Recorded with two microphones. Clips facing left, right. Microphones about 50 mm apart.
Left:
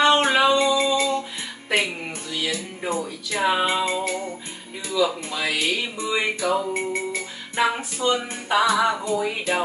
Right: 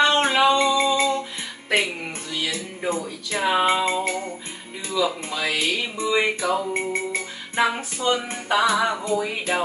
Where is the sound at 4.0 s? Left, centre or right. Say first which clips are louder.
Right 1 dB; right.